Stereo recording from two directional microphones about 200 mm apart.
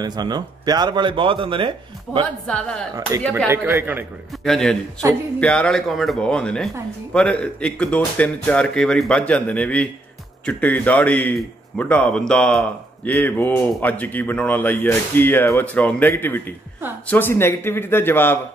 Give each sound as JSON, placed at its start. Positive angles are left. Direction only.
{"t": 0.0, "sound": "speech", "side_deg": -20}
{"t": 2.4, "sound": "speech", "side_deg": 5}
{"t": 3.4, "sound": "a man's voice", "side_deg": -10}
{"t": 4.5, "sound": "a man's voice", "side_deg": 0}